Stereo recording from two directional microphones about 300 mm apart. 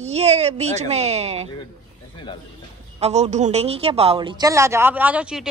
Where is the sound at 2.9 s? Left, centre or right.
Right.